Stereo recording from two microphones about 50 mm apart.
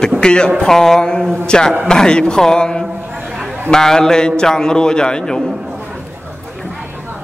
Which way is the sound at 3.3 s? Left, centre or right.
Centre.